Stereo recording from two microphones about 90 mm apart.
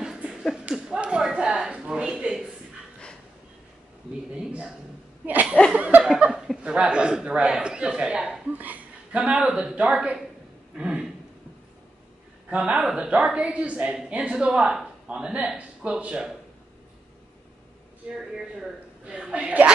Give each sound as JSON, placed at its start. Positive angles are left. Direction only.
{"t": 0.0, "sound": "a sound", "side_deg": -5}
{"t": 0.7, "sound": "speech", "side_deg": -10}
{"t": 4.3, "sound": "a man's voice", "side_deg": -10}
{"t": 12.4, "sound": "a man's voice", "side_deg": -15}
{"t": 18.1, "sound": "a man's voice", "side_deg": -5}